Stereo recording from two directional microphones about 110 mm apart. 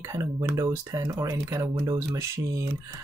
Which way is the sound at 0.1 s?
30° right (ahead or behind).